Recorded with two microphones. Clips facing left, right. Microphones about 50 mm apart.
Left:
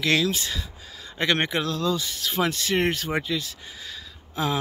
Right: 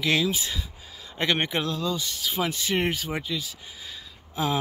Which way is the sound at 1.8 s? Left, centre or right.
Centre.